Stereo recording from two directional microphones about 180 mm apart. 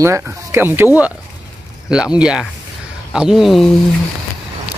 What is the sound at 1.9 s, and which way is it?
A man's voice, 5° right (ahead or behind).